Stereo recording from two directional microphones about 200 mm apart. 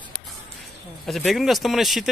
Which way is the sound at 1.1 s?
Centre (ahead or behind).